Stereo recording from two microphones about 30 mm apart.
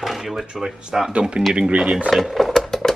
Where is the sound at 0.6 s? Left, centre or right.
Centre.